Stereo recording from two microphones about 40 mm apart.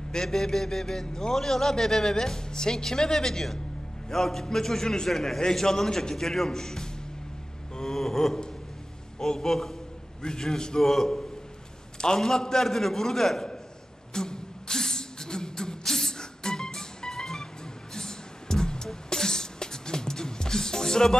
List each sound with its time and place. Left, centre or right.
0.1 s a man's voice: centre
7.7 s a sound: centre
9.2 s a man's voice: centre
14.1 s beatboxing: centre
15.8 s music: centre
17.9 s beatboxing: centre